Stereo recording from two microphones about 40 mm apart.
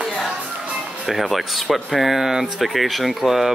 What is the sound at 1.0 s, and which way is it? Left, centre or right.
Speech, centre.